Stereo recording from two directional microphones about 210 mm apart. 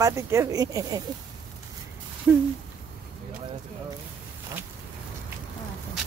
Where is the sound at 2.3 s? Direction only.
10° right (ahead or behind).